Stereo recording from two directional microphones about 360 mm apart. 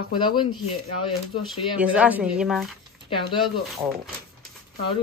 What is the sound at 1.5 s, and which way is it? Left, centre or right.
Speech, centre.